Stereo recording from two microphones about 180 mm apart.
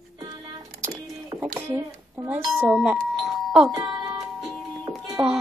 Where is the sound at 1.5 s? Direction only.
15° right (ahead or behind).